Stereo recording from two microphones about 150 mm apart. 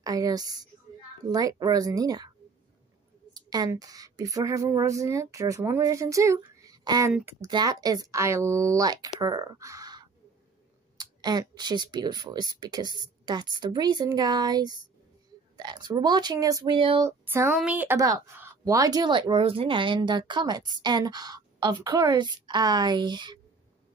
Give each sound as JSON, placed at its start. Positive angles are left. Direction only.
{"t": 0.0, "sound": "speech", "side_deg": -25}
{"t": 3.3, "sound": "speech", "side_deg": -25}
{"t": 16.7, "sound": "a sound", "side_deg": -35}
{"t": 17.0, "sound": "speech", "side_deg": -15}